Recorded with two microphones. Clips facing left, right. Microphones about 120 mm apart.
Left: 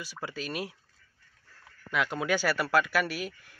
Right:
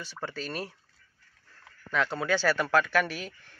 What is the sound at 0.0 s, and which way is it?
Speech, 10° left (ahead or behind).